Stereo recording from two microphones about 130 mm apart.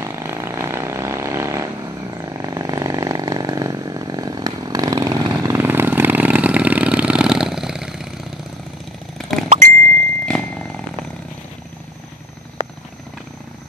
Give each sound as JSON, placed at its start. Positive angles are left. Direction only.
{"t": 0.0, "sound": "vehicle", "side_deg": -20}
{"t": 9.2, "sound": "a sound", "side_deg": 0}
{"t": 10.2, "sound": "vehicle", "side_deg": 5}